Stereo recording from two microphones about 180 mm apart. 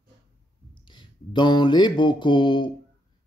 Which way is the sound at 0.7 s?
25° left (ahead or behind).